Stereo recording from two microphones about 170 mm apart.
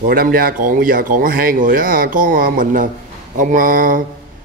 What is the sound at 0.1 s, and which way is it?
A man's voice, 60° right (ahead or behind).